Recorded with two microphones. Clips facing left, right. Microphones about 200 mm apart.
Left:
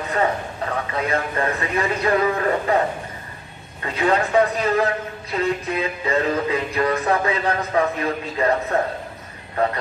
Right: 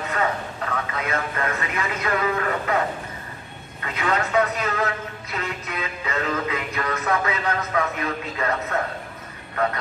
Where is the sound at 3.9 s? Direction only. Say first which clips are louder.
Left 4 dB; 30° left (ahead or behind).